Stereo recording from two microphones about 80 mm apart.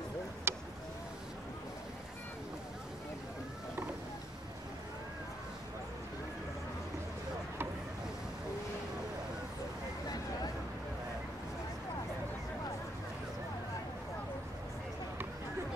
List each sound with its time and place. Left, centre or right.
0.5 s vehicle: right